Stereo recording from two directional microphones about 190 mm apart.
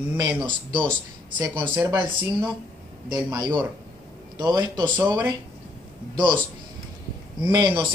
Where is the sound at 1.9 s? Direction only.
20° right (ahead or behind).